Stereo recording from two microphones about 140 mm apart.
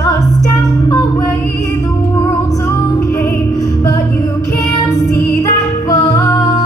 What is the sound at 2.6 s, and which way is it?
Music, 20° left (ahead or behind).